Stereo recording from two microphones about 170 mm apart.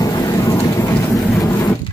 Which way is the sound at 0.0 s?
20° left (ahead or behind).